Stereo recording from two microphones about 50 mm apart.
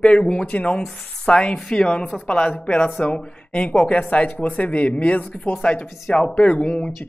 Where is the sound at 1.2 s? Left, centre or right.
Centre.